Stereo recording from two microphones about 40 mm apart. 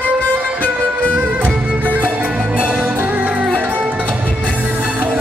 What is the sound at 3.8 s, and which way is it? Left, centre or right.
Music, right.